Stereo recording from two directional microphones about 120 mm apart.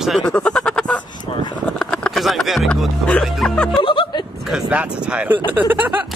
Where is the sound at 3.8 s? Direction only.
40° left (ahead or behind).